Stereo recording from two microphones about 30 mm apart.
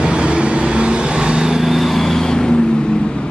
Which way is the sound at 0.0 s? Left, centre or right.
Right.